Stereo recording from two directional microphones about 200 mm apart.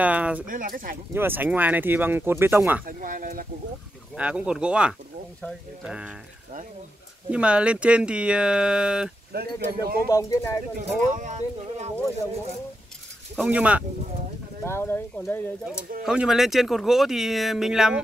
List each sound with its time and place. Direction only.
0.0 s speech: 5° right (ahead or behind)
0.5 s speech: 45° right (ahead or behind)
1.1 s speech: 10° right (ahead or behind)
2.8 s speech: 45° right (ahead or behind)
4.1 s speech: 5° right (ahead or behind)
7.2 s speech: 5° right (ahead or behind)
9.3 s speech: 50° right (ahead or behind)
10.0 s speech: 15° left (ahead or behind)
10.8 s speech: 40° right (ahead or behind)
13.4 s speech: 5° right (ahead or behind)
14.6 s speech: 10° left (ahead or behind)
16.1 s speech: 5° right (ahead or behind)